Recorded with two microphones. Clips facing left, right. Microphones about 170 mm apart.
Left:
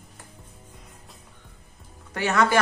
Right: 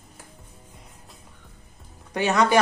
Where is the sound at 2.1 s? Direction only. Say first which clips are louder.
Right 2 dB; 20° right (ahead or behind).